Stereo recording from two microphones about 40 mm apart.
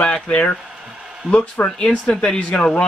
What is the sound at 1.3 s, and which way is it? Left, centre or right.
Speech, left.